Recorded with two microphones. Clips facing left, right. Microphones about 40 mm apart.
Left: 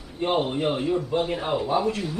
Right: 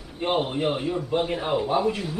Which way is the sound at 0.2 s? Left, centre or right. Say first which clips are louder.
Left 1 dB; centre.